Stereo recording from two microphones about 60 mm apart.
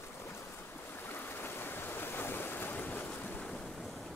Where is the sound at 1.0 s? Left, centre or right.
Left; by 3.7 s centre.